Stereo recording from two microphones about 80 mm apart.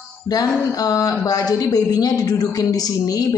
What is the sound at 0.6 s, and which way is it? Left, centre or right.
A woman's voice, left.